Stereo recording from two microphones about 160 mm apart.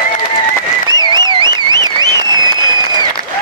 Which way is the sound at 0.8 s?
25° right (ahead or behind).